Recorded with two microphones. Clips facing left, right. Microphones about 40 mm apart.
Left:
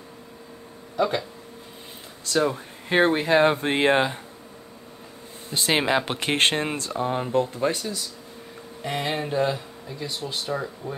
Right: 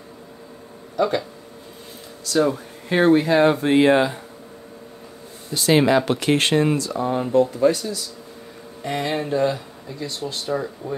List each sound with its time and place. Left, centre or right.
0.9 s speech: centre
2.5 s speech: left
5.5 s speech: left
5.8 s speech: left
8.8 s speech: centre